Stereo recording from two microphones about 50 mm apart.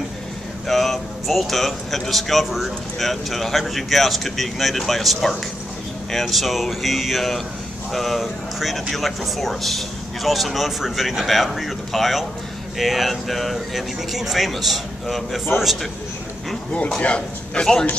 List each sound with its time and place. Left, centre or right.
0.7 s speech: centre
16.9 s a man's voice: left